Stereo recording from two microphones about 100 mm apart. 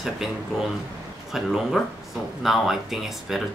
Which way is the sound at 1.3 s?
Centre (ahead or behind).